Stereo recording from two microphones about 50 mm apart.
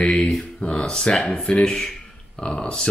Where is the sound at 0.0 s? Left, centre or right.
Left.